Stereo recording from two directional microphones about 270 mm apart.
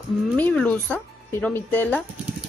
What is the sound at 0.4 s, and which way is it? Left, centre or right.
Speech, centre.